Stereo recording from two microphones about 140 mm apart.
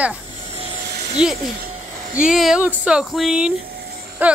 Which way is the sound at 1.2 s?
5° right (ahead or behind).